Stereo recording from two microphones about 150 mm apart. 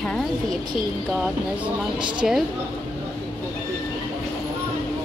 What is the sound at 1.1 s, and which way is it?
A woman's voice, 10° right (ahead or behind).